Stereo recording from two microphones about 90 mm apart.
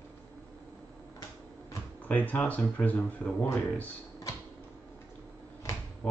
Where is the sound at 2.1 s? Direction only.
15° left (ahead or behind).